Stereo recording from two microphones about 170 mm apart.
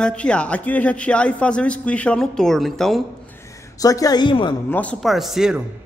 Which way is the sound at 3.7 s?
20° left (ahead or behind).